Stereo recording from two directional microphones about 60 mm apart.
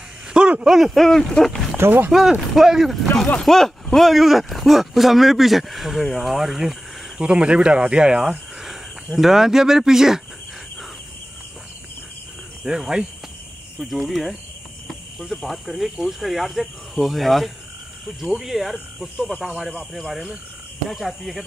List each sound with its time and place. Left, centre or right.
0.3 s a sound: centre
0.7 s speech: centre
1.8 s speech: right
2.5 s speech: centre
7.2 s speech: centre
12.6 s speech: centre
14.9 s a sound: centre
15.3 s speech: centre